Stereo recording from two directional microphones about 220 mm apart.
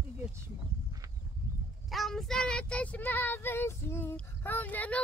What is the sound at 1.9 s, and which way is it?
Child singing, centre (ahead or behind).